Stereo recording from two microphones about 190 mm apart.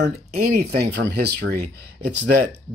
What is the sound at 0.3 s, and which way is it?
Speech, 45° right (ahead or behind).